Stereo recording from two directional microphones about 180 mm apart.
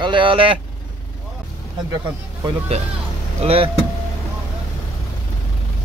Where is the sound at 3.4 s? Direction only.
35° right (ahead or behind).